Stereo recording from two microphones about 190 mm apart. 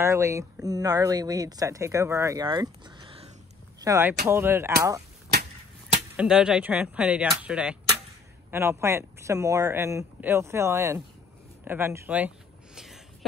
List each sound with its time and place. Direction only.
0.0 s speech: 15° right (ahead or behind)
3.8 s speech: 15° right (ahead or behind)
6.1 s speech: 5° right (ahead or behind)
12.7 s a sound: centre (ahead or behind)